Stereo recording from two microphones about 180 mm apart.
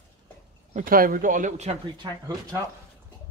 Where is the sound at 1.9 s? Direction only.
25° right (ahead or behind).